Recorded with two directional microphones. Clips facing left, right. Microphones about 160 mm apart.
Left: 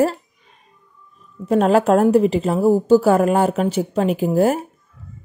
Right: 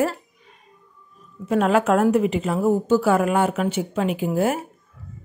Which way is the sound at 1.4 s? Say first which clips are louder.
Left 4 dB; 35° left (ahead or behind).